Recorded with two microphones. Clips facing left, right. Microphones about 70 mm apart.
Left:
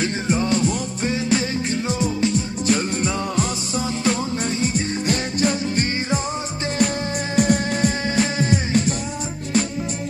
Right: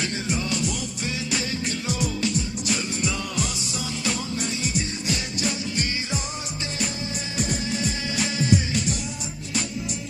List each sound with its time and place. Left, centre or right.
0.0 s music: left
7.3 s music: left